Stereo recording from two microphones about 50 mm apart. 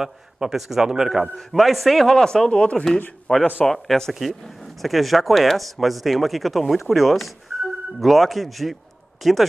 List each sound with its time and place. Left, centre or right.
0.0 s a man's voice: centre
2.1 s speech: centre
3.6 s speech: centre